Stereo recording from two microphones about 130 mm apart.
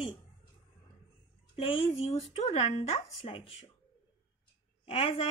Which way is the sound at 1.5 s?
50° left (ahead or behind).